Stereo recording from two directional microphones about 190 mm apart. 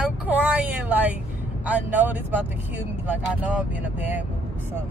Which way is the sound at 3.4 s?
10° right (ahead or behind).